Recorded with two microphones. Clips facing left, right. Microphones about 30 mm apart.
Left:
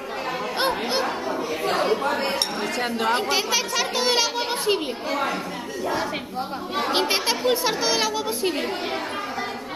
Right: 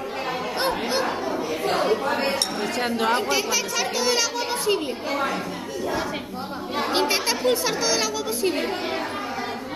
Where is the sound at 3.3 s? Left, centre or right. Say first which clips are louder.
Left 1 dB; left.